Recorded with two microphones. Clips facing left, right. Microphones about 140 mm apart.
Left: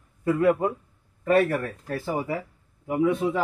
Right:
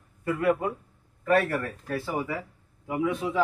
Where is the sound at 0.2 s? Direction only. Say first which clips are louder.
Left 4 dB; 25° left (ahead or behind).